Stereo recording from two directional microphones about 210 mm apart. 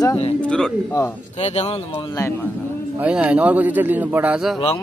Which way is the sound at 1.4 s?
30° left (ahead or behind).